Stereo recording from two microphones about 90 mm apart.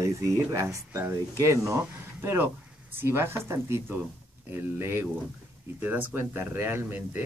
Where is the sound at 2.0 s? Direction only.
20° right (ahead or behind).